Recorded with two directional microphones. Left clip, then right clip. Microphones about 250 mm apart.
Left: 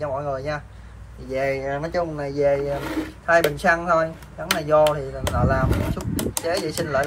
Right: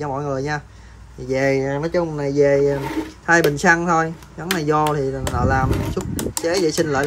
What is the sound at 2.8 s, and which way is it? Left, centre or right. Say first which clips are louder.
Speech: right 2 dB; centre.